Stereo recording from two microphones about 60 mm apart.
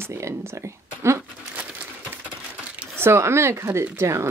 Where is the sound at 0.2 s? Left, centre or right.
Right.